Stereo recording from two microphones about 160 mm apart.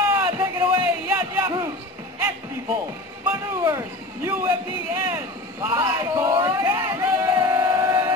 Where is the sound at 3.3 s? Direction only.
15° right (ahead or behind).